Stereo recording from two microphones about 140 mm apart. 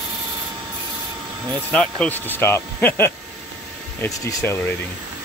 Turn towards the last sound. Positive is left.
turn(degrees=20)  # may be behind; listen again after turning